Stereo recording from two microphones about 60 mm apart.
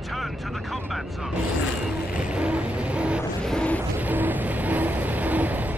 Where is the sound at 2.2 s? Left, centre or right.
Centre.